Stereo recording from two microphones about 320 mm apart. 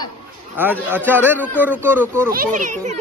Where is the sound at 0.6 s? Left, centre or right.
Centre.